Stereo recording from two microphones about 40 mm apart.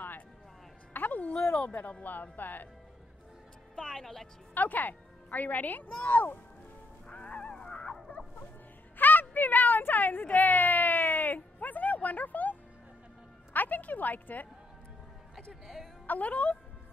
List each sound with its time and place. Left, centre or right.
0.9 s music: left
1.7 s speech: left
3.7 s a woman's voice: centre
4.6 s a woman's voice: left
7.1 s honk: left
8.9 s a sound: left
13.5 s a woman's voice: left
15.6 s a woman's voice: centre
16.1 s speech: left